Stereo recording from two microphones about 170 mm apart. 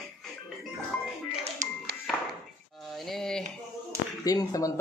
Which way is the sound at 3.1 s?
5° left (ahead or behind).